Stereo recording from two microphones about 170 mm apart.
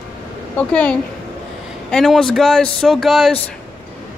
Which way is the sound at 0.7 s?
5° left (ahead or behind).